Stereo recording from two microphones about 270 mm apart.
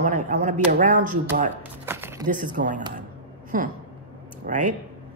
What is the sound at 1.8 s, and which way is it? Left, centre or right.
Music, centre.